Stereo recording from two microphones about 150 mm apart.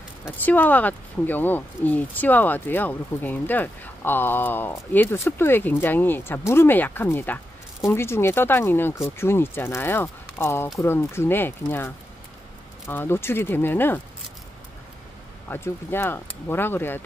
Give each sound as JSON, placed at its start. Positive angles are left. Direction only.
{"t": 0.5, "sound": "speech", "side_deg": 10}
{"t": 15.5, "sound": "speech", "side_deg": 15}